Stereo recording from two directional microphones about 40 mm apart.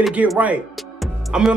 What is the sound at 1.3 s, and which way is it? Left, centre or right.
Speech, right.